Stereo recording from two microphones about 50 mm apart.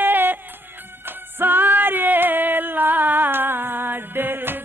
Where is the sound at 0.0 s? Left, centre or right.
Right.